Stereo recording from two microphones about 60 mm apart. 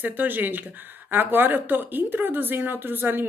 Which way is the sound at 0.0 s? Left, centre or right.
Right.